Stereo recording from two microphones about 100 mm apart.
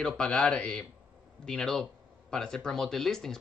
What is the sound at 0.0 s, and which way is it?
Speech, 5° left (ahead or behind).